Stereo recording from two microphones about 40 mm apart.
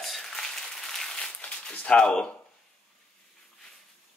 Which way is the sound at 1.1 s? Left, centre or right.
Left.